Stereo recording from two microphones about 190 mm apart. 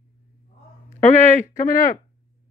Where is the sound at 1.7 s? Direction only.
45° left (ahead or behind).